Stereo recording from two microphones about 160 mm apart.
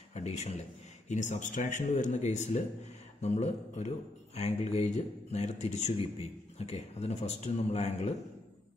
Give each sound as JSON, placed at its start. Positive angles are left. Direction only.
{"t": 0.1, "sound": "speech", "side_deg": 45}